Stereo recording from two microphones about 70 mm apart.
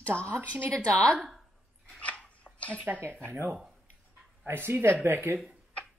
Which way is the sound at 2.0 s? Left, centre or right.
Centre.